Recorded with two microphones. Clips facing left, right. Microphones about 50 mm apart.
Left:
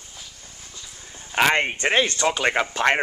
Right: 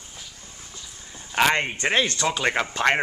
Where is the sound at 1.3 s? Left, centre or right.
Centre.